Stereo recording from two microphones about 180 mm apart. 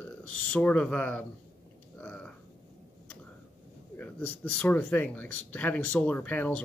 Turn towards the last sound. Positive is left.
turn(degrees=10)  # may be behind; listen again after turning